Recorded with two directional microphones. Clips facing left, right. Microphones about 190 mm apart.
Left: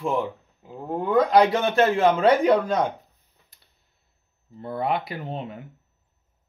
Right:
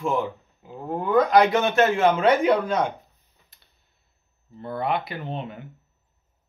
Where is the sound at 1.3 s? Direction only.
35° left (ahead or behind).